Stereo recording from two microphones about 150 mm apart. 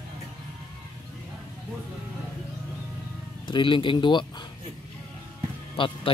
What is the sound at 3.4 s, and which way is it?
Speech, 35° left (ahead or behind).